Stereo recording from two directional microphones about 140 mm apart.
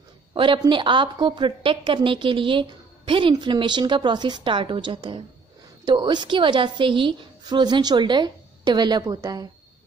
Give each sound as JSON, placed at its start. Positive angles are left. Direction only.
{"t": 0.3, "sound": "a woman's voice", "side_deg": -35}